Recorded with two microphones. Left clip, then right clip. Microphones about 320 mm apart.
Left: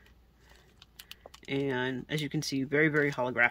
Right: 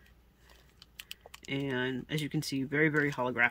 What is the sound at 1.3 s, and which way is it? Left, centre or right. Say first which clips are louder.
Speech: left 4 dB; centre.